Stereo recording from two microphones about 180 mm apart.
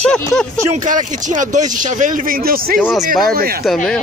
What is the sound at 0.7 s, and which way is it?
Speech, 45° right (ahead or behind).